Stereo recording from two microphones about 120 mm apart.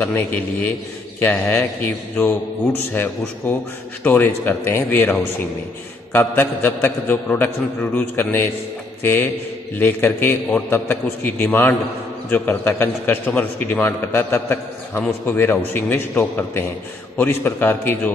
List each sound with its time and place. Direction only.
0.0 s a man's voice: 15° left (ahead or behind)
6.1 s a man's voice: 20° left (ahead or behind)